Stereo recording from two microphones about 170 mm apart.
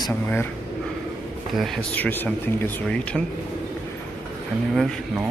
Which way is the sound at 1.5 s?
10° left (ahead or behind).